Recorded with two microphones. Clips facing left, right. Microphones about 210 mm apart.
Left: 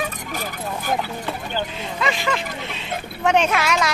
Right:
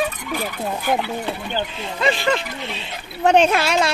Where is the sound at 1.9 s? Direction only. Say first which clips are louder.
Right 4 dB; 30° right (ahead or behind).